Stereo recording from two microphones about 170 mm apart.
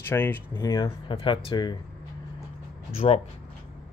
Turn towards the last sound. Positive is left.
turn(degrees=35)  # may be behind; listen again after turning